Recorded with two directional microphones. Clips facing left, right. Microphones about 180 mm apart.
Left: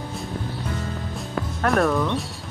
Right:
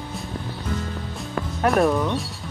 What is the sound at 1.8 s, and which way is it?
Speech, 15° right (ahead or behind).